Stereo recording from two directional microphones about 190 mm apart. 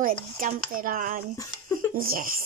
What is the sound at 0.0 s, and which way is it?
Speech, 45° right (ahead or behind).